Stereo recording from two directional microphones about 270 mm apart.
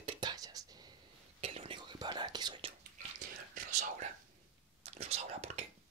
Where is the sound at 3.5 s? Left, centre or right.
Right.